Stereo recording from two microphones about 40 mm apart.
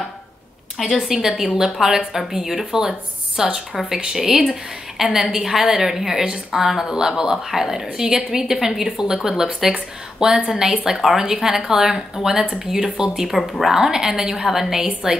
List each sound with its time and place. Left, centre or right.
0.9 s speech: centre
13.3 s speech: centre
13.7 s speech: centre